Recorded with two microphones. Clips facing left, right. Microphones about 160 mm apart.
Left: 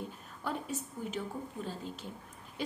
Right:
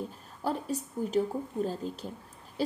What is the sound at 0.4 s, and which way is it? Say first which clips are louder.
Speech: right 5 dB; 35° right (ahead or behind).